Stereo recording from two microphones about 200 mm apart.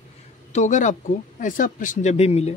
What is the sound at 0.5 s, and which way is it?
Speech, 35° left (ahead or behind).